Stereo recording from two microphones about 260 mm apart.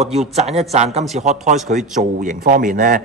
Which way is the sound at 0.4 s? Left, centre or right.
Right.